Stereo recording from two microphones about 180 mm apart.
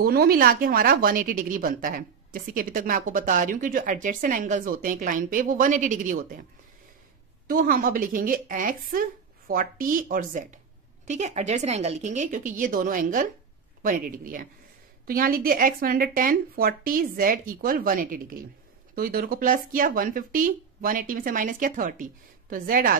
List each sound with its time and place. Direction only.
0.0 s speech: 55° right (ahead or behind)
7.4 s a woman's voice: 55° right (ahead or behind)